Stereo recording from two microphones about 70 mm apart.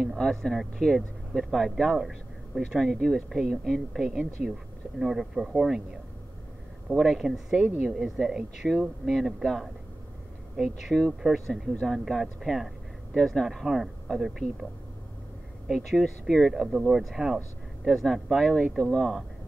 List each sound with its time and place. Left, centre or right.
0.2 s speech: centre
6.9 s speech: centre
15.7 s speech: centre
16.6 s speech: centre